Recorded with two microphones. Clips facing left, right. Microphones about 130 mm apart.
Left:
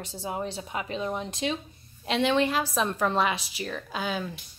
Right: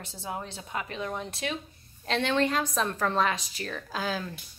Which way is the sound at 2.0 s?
10° left (ahead or behind).